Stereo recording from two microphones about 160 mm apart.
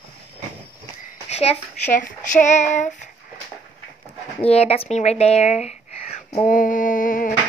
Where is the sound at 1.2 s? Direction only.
45° left (ahead or behind).